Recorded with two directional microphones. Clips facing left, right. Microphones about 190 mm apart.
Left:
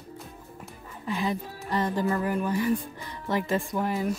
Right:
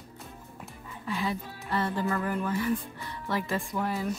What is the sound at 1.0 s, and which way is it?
Speech, 20° left (ahead or behind).